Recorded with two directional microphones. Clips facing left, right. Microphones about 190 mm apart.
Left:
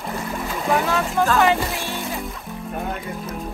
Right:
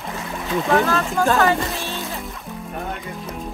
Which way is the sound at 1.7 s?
15° left (ahead or behind).